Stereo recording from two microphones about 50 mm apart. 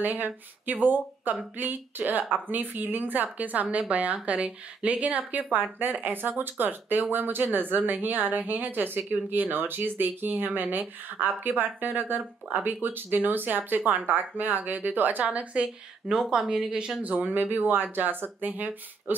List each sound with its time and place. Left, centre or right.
0.0 s a woman's voice: right; by 17.0 s centre
17.0 s a woman's voice: right